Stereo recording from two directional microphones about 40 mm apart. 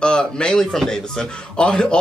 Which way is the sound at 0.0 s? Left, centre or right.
Left.